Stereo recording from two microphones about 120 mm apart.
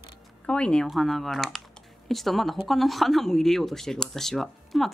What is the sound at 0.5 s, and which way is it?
Speech, 10° left (ahead or behind).